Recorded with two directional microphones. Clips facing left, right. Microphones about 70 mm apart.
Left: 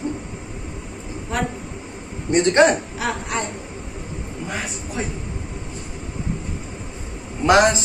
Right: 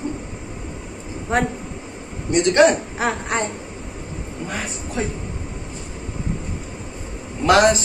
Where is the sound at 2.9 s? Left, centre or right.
Right.